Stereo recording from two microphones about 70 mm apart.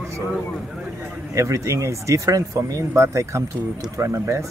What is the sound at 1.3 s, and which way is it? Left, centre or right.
Speech, right.